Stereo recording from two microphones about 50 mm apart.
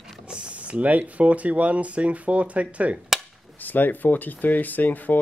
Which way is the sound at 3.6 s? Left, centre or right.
Left.